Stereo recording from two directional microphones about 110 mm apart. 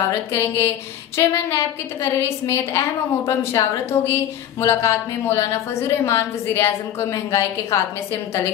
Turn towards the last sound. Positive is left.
turn(degrees=25)  # may be behind; listen again after turning